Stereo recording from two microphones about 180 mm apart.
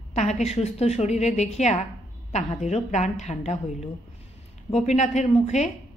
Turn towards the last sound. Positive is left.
turn(degrees=40)  # may be behind; listen again after turning